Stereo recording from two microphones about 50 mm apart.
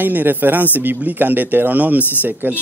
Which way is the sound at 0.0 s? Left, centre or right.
Right.